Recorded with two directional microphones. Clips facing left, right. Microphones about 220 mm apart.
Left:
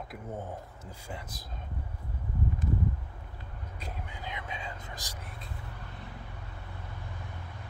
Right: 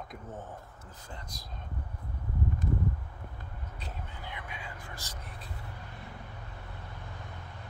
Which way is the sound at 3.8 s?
15° left (ahead or behind).